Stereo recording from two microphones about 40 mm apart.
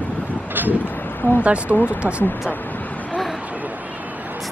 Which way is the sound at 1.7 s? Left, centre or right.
Left.